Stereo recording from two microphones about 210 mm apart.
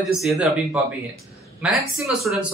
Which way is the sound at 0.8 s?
5° right (ahead or behind).